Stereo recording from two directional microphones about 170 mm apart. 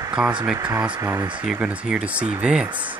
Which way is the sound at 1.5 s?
5° right (ahead or behind).